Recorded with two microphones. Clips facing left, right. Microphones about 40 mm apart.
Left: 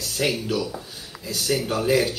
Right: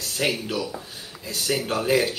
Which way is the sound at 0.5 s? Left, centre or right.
Centre.